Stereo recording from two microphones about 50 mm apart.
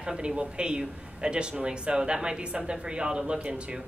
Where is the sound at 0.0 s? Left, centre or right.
Centre.